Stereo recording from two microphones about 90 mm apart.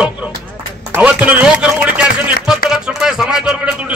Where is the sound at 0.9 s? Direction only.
15° right (ahead or behind).